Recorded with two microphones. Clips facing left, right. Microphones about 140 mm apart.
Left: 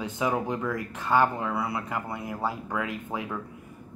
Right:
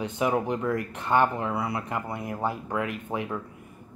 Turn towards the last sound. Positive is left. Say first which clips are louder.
# right 2 dB
turn(degrees=-20)  # may be behind; listen again after turning